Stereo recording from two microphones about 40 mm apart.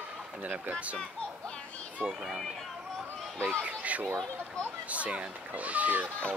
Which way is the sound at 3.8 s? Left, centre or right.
Right.